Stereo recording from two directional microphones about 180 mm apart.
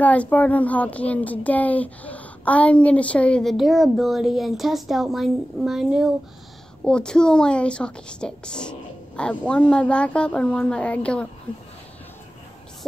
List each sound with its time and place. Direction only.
0.0 s a woman's voice: 10° left (ahead or behind)